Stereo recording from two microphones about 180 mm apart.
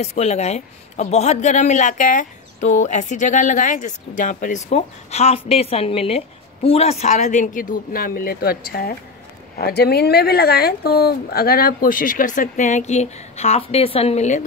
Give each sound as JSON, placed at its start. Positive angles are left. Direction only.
{"t": 0.0, "sound": "a man's voice", "side_deg": 35}